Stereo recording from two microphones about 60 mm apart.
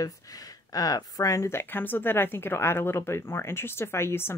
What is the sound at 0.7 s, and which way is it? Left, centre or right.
Speech, left.